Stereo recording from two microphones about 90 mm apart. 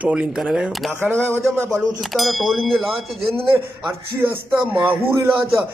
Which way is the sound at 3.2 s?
90° right.